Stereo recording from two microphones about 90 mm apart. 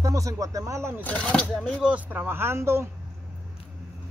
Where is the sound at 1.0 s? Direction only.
15° left (ahead or behind).